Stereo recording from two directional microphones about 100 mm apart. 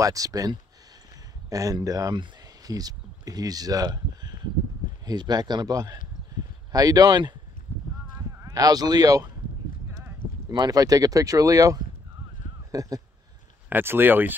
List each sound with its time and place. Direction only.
0.0 s a man's voice: 35° right (ahead or behind)
8.4 s speech: 40° right (ahead or behind)
10.5 s speech: 40° right (ahead or behind)
13.7 s speech: 20° right (ahead or behind)